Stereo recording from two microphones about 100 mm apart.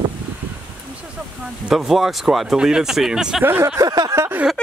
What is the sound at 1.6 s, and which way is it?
Speech, 5° right (ahead or behind).